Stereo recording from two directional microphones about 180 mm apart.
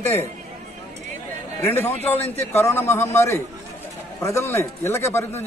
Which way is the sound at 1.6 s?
10° left (ahead or behind).